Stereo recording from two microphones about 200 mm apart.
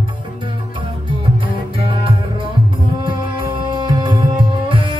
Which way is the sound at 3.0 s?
25° right (ahead or behind).